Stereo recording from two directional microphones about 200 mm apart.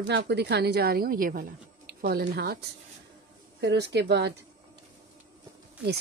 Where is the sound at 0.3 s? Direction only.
55° right (ahead or behind).